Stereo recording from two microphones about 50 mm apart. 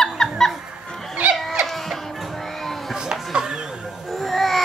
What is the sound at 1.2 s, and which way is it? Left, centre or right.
Music, right.